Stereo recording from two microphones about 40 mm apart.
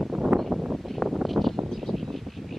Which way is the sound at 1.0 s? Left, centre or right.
Centre.